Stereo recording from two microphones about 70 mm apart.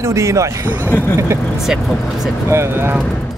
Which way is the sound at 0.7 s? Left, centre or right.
Right.